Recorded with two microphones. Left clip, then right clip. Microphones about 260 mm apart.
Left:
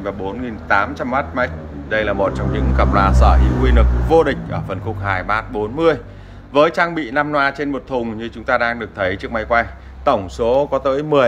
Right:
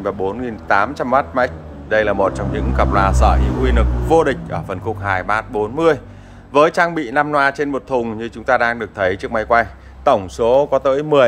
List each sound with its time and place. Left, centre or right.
0.0 s a man's voice: centre